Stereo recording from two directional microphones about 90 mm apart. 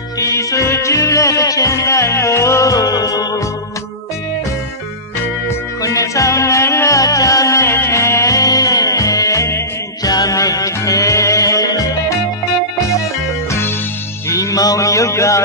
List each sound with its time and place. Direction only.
0.2 s music: 35° left (ahead or behind)
5.8 s music: 35° left (ahead or behind)
14.3 s a sound: 40° left (ahead or behind)